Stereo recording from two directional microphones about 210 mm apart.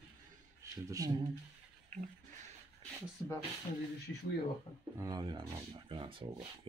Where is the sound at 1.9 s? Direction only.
35° right (ahead or behind).